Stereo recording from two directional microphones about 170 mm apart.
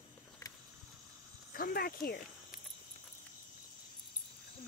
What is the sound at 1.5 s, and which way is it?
Speech, 60° left (ahead or behind).